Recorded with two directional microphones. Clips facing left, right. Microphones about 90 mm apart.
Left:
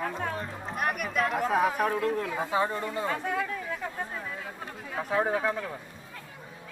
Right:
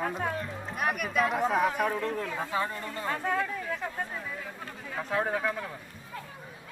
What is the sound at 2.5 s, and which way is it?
Speech, 25° left (ahead or behind).